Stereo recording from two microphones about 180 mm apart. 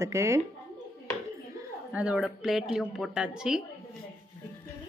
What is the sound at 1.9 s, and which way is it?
Speech, 5° right (ahead or behind).